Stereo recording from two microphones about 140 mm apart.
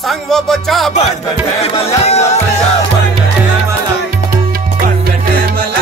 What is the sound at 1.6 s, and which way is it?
Music, 45° left (ahead or behind).